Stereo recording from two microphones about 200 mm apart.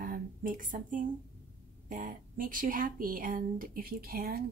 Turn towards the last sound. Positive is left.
turn(degrees=-50)  # may be behind; listen again after turning